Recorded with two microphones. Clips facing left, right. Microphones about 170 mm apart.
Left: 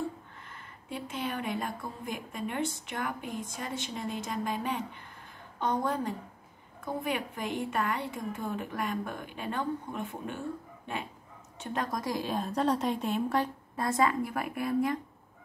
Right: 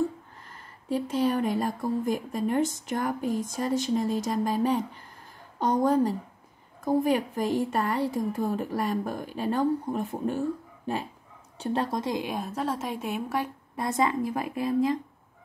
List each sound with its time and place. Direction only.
0.5 s a woman's voice: 40° right (ahead or behind)